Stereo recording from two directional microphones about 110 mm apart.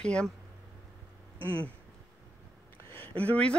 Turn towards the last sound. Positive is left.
turn(degrees=10)  # may be behind; listen again after turning